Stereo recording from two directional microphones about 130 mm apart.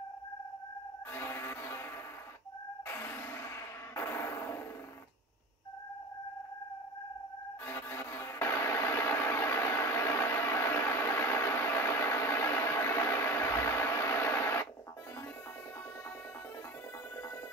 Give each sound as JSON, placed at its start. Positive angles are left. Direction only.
{"t": 1.1, "sound": "music", "side_deg": 20}
{"t": 2.9, "sound": "a sound", "side_deg": 15}
{"t": 7.9, "sound": "music", "side_deg": 20}